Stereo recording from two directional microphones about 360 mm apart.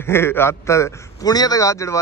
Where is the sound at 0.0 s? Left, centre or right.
Centre.